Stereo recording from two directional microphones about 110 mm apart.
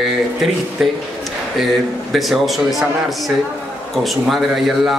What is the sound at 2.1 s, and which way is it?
A man's voice, centre (ahead or behind).